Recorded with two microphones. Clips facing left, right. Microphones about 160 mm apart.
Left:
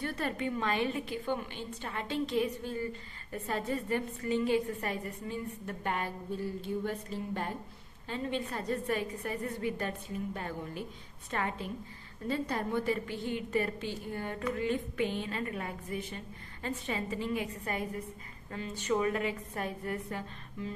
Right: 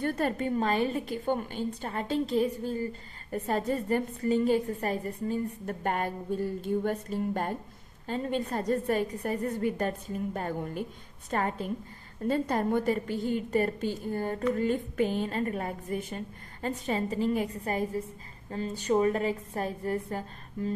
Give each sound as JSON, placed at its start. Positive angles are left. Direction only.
{"t": 0.0, "sound": "a woman's voice", "side_deg": -45}